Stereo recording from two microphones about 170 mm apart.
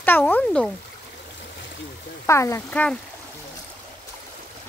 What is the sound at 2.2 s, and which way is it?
Speech, 15° left (ahead or behind).